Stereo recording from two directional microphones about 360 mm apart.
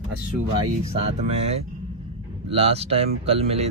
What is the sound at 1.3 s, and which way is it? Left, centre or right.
Speech, centre.